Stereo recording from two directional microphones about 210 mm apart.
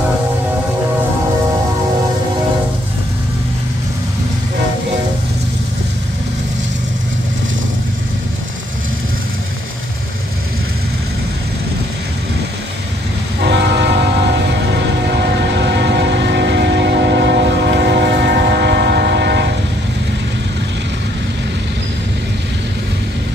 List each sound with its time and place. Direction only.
13.4 s train: 55° right (ahead or behind)
15.1 s train: 55° right (ahead or behind)